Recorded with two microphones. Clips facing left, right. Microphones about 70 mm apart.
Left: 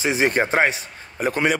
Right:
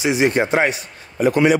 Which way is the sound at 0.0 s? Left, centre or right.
Left.